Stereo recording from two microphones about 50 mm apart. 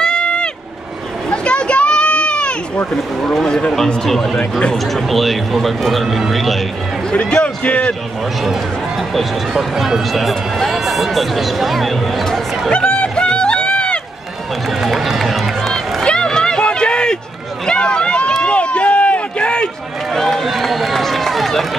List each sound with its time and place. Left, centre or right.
0.0 s vehicle: centre
1.3 s sheep: centre
3.3 s speech: centre
4.4 s speech: left
4.7 s speech: centre
7.2 s speech: left
9.1 s speech: centre
12.7 s run: centre
14.7 s run: centre
16.0 s run: centre
20.1 s run: centre